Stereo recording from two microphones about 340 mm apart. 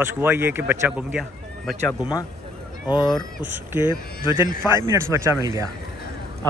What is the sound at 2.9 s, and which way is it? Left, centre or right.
Speech, centre.